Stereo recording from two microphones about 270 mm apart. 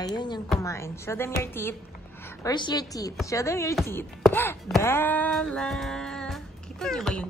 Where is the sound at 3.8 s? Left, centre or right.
Centre.